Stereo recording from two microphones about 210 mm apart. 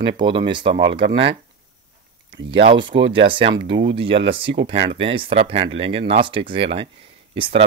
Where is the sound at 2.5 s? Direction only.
25° right (ahead or behind).